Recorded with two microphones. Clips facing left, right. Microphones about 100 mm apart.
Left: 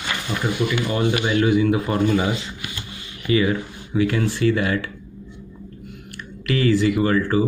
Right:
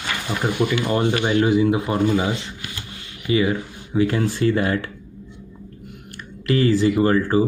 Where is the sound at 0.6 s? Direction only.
35° right (ahead or behind); by 4.0 s 20° right (ahead or behind).